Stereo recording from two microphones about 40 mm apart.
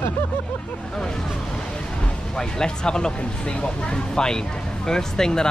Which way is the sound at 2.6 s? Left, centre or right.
Centre.